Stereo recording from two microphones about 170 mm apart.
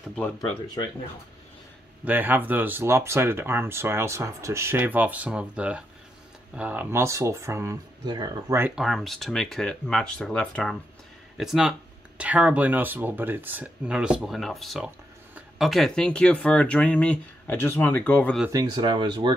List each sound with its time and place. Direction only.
2.0 s speech: 10° right (ahead or behind)
8.7 s speech: centre (ahead or behind)
18.5 s speech: 25° right (ahead or behind)